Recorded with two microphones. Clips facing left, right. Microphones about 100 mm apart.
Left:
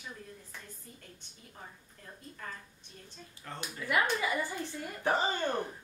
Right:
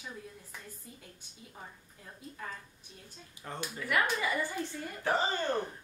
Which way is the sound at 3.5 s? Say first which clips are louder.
Right 2 dB; 20° right (ahead or behind).